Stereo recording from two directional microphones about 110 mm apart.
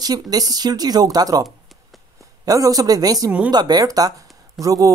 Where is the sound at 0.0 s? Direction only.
35° right (ahead or behind).